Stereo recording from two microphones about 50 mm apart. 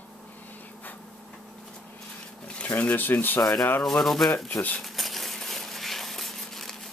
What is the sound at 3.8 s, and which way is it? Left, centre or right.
Speech, centre.